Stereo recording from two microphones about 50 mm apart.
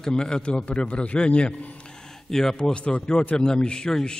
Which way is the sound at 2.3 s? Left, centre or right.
Centre.